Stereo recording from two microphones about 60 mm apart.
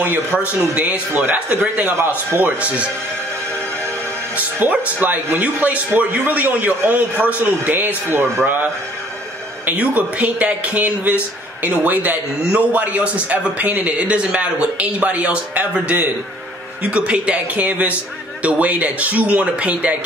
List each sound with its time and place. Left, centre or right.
0.0 s speech: right
2.0 s speech: right
2.6 s speech: right
5.0 s speech: right
9.7 s speech: right